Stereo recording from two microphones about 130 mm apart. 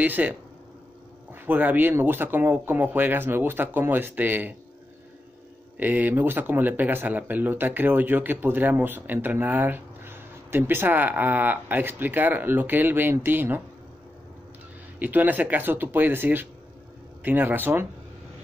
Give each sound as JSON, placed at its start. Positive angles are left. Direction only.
{"t": 0.0, "sound": "speech", "side_deg": -15}
{"t": 5.8, "sound": "speech", "side_deg": -15}
{"t": 15.0, "sound": "speech", "side_deg": -15}